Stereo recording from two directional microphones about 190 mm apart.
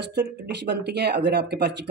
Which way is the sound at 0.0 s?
65° right (ahead or behind).